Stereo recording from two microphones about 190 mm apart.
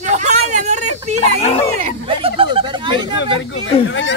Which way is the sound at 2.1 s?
30° right (ahead or behind).